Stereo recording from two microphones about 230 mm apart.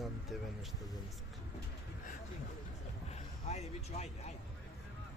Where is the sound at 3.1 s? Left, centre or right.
Left.